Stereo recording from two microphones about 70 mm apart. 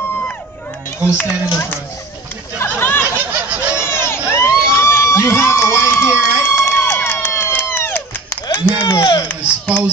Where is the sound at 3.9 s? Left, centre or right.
Left.